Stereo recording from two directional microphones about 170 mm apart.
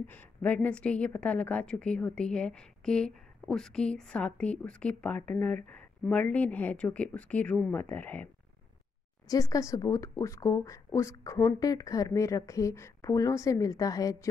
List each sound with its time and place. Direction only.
0.0 s a woman's voice: 10° left (ahead or behind)
9.3 s speech: 20° left (ahead or behind)